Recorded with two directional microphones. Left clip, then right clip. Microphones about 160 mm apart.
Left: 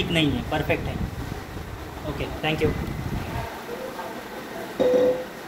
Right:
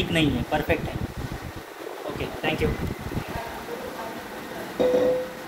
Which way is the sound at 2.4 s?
10° left (ahead or behind).